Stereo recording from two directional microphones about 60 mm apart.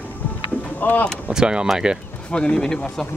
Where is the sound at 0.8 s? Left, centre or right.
Left.